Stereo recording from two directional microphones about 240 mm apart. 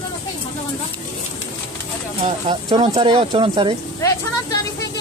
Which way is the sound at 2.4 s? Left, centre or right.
Right.